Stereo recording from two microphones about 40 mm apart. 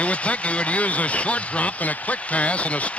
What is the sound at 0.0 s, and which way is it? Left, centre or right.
A man's voice, left.